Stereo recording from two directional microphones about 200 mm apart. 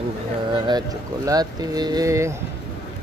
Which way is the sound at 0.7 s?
20° right (ahead or behind).